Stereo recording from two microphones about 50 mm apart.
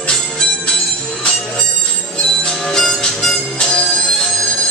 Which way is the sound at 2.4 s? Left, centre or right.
Centre.